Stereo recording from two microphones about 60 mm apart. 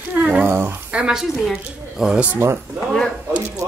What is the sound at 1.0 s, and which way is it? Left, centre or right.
A woman's voice, centre.